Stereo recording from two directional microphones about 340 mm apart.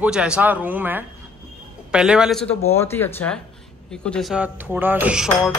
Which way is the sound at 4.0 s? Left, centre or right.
Centre.